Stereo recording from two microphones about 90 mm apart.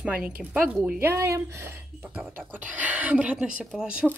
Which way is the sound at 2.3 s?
15° right (ahead or behind).